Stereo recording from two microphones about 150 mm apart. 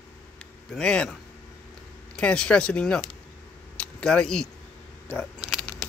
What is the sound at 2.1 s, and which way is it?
Speech, 5° left (ahead or behind).